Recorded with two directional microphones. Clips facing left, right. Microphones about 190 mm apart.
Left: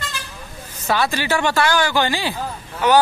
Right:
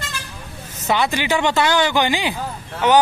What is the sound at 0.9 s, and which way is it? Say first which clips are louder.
Speech: right 1 dB; 20° right (ahead or behind).